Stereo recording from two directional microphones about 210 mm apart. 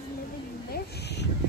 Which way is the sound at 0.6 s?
50° left (ahead or behind).